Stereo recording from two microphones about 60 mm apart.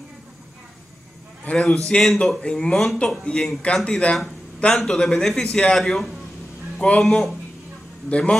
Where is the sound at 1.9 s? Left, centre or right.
Centre.